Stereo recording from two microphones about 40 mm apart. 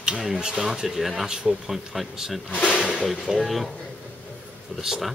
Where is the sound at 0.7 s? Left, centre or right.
Centre.